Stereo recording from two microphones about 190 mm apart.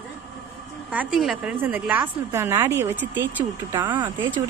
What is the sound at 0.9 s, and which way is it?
Speech, 5° right (ahead or behind).